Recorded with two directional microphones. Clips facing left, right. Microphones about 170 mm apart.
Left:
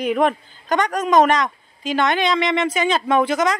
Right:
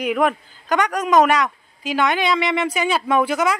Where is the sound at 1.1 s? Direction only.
10° right (ahead or behind).